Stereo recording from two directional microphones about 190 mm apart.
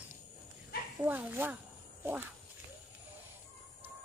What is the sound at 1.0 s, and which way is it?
Chicken, 10° right (ahead or behind).